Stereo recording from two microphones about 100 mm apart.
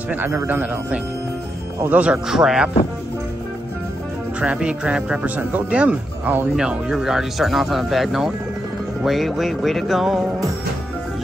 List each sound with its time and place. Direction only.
0.1 s speech: 20° right (ahead or behind)
4.4 s speech: 10° right (ahead or behind)